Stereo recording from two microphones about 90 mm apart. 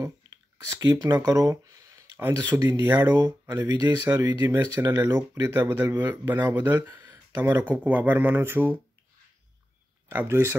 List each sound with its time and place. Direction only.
0.6 s speech: 35° right (ahead or behind)
10.0 s speech: 25° right (ahead or behind)